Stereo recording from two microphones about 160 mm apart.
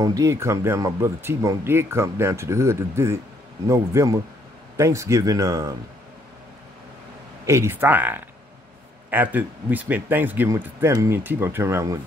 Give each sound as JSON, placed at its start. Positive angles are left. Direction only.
{"t": 0.0, "sound": "speech", "side_deg": -20}
{"t": 7.4, "sound": "speech", "side_deg": -15}